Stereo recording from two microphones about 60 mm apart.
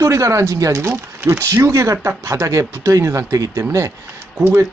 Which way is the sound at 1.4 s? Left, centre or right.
Right.